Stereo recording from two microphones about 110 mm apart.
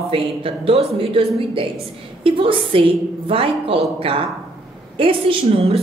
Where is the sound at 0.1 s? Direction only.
60° right (ahead or behind).